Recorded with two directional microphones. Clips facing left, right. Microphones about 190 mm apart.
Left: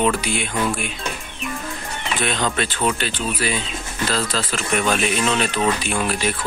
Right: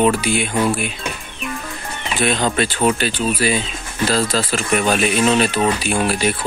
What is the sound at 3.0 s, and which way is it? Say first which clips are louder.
Speech: right 5 dB; 10° right (ahead or behind).